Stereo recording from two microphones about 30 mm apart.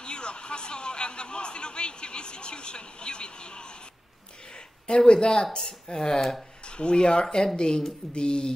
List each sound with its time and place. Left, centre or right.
0.0 s speech: left
4.8 s speech: left
7.2 s speech: centre
7.5 s speech: left